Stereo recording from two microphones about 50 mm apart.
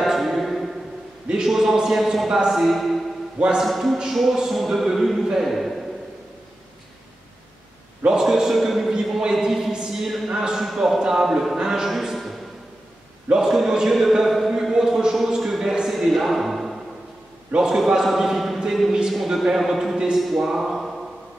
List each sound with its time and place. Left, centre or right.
0.0 s music: centre
1.3 s a man's voice: centre
3.3 s speech: centre
3.6 s a man's voice: centre
8.0 s a man's voice: centre
10.7 s a man's voice: centre
17.6 s a man's voice: centre